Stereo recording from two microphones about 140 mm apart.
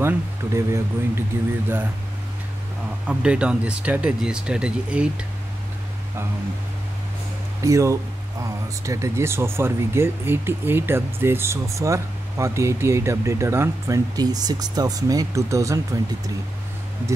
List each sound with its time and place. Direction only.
0.0 s speech: 20° right (ahead or behind)
3.1 s speech: 10° right (ahead or behind)
7.6 s speech: 20° right (ahead or behind)